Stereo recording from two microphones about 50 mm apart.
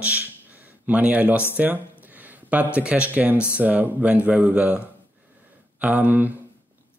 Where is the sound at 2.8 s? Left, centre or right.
Right.